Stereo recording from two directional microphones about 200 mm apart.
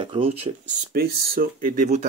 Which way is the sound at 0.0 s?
25° right (ahead or behind).